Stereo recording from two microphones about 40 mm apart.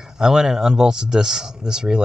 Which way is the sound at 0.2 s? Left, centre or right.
Centre.